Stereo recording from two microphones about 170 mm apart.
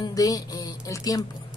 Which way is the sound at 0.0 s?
20° left (ahead or behind).